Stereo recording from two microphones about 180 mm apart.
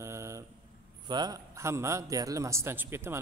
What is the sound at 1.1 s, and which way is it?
A man's voice, 25° right (ahead or behind).